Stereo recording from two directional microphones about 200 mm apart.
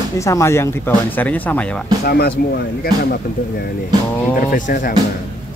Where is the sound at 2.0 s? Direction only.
50° left (ahead or behind).